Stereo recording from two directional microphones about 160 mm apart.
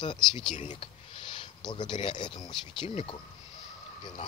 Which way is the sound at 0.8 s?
35° left (ahead or behind).